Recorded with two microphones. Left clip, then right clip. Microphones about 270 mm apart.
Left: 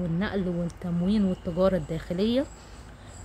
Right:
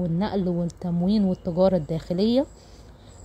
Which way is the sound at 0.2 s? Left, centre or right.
Centre.